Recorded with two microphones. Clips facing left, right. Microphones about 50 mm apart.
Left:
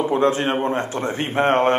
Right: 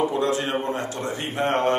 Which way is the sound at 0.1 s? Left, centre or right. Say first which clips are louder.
Left 5 dB; left.